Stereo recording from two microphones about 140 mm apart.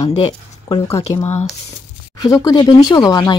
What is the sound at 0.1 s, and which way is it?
Speech, 45° left (ahead or behind).